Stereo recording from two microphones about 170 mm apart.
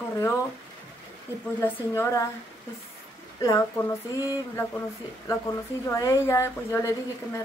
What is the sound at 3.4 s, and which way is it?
Speech, 15° left (ahead or behind).